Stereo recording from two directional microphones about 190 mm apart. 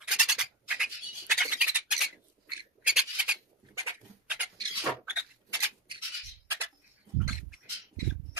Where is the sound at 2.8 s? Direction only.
5° right (ahead or behind).